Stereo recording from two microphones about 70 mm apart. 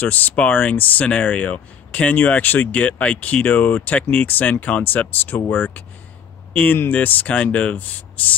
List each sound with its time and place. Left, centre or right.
0.0 s speech: left